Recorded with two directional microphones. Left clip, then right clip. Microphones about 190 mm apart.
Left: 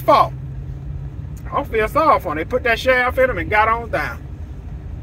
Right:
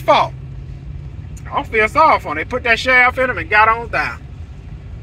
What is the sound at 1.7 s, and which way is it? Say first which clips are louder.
Speech: right 3 dB; 15° left (ahead or behind).